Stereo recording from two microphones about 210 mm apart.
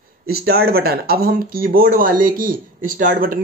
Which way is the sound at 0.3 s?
45° right (ahead or behind).